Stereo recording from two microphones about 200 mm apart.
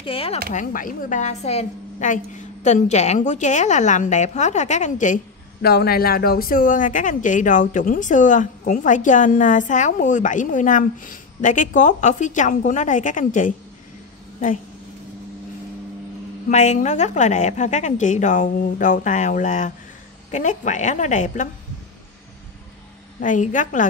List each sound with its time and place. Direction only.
0.0 s speech: 30° left (ahead or behind)
0.5 s a woman's voice: 40° left (ahead or behind)
16.4 s a woman's voice: 35° left (ahead or behind)
23.2 s a woman's voice: 40° left (ahead or behind)